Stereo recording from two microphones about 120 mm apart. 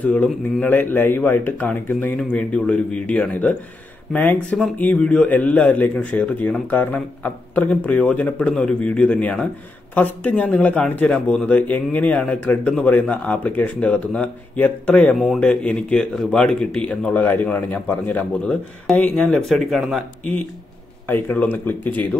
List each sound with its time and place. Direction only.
0.0 s a man's voice: 10° left (ahead or behind)
21.1 s a man's voice: 15° left (ahead or behind)